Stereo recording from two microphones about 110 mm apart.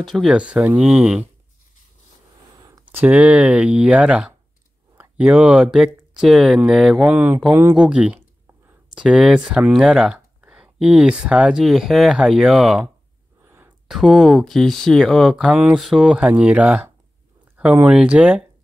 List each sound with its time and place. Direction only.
0.0 s speech: centre (ahead or behind)
0.4 s speech: 10° right (ahead or behind)
2.8 s speech: 15° right (ahead or behind)
7.1 s speech: 15° right (ahead or behind)
13.8 s speech: centre (ahead or behind)
15.4 s speech: 10° right (ahead or behind)